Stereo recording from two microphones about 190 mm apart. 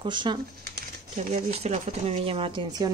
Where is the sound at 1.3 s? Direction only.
35° right (ahead or behind).